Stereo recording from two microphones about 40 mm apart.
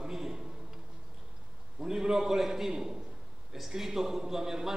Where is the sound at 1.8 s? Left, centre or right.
Centre.